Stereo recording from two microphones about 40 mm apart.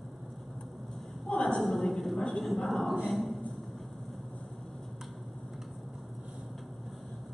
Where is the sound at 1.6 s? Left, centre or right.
Centre.